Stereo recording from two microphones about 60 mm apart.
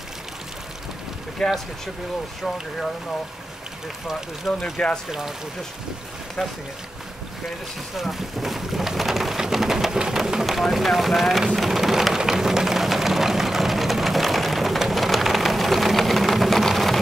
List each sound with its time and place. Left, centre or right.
1.4 s speech: centre
4.7 s speech: centre
7.9 s rain: centre